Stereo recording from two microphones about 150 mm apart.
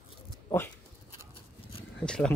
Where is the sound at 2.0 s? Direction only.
5° left (ahead or behind).